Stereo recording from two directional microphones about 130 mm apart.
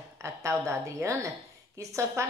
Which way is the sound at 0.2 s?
20° right (ahead or behind).